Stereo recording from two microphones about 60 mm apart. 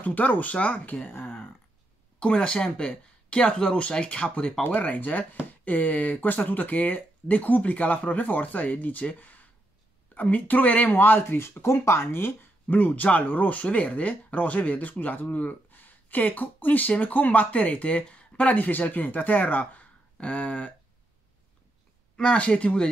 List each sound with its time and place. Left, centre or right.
0.0 s speech: left
22.1 s speech: centre